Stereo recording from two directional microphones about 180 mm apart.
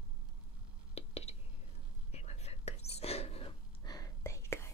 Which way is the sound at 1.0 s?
35° left (ahead or behind).